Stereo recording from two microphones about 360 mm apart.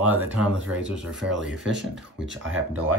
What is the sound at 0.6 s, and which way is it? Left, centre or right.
Speech, right.